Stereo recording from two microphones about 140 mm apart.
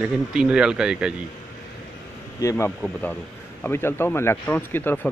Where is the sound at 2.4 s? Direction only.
25° left (ahead or behind).